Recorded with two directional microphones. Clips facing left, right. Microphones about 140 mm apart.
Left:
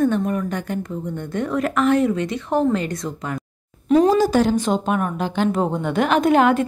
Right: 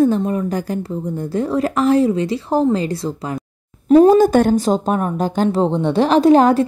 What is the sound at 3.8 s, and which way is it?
Speech, 50° right (ahead or behind).